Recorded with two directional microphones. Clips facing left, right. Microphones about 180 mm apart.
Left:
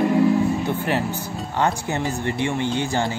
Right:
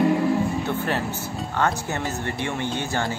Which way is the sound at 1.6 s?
15° left (ahead or behind).